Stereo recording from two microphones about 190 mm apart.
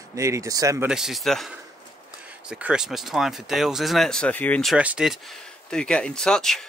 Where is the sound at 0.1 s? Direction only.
15° right (ahead or behind).